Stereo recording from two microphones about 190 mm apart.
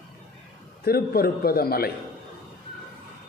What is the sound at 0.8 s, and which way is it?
A man's voice, 55° left (ahead or behind).